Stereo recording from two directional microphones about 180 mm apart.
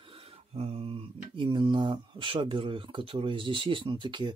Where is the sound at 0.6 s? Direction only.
30° right (ahead or behind).